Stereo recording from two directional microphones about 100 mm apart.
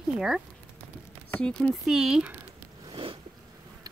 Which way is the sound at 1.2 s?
10° left (ahead or behind).